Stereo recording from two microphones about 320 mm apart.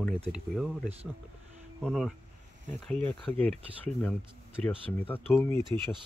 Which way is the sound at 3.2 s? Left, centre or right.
Centre.